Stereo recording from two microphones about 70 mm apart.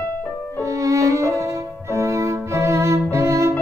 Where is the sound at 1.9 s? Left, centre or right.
Right.